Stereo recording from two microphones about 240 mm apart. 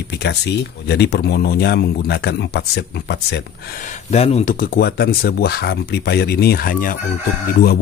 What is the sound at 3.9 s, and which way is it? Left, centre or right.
Speech, left.